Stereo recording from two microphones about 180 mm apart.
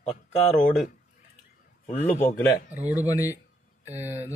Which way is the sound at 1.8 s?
45° left (ahead or behind).